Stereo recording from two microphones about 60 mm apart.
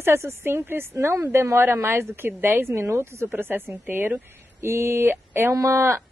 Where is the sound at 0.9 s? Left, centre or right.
Right.